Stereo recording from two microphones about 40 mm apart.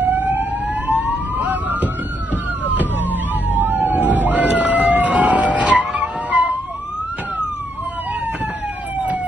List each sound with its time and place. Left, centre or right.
0.0 s emergency vehicle: right
3.5 s vehicle: right